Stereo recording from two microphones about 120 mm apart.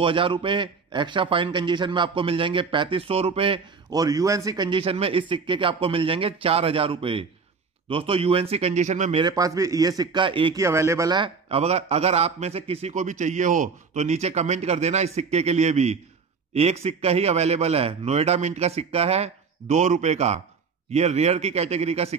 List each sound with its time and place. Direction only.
0.0 s speech: 45° right (ahead or behind)
3.9 s a man's voice: 30° right (ahead or behind); by 9.2 s 75° right (ahead or behind)
9.2 s a man's voice: 30° right (ahead or behind)
10.2 s speech: 45° right (ahead or behind)
10.5 s speech: 25° right (ahead or behind)
11.1 s a man's voice: 50° right (ahead or behind)